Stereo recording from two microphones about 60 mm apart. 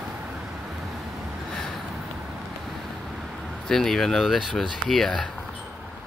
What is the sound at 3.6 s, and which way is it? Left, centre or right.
Speech, centre.